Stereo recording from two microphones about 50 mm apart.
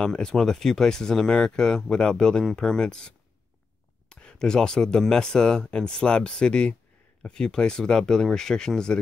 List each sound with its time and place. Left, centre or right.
0.0 s speech: centre